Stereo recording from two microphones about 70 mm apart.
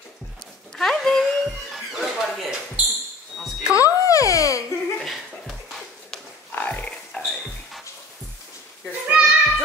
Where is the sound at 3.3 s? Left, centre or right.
Centre.